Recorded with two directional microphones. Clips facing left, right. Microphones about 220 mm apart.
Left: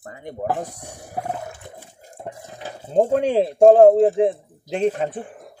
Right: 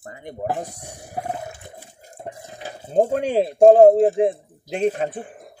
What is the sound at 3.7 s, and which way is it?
Speech, 15° right (ahead or behind).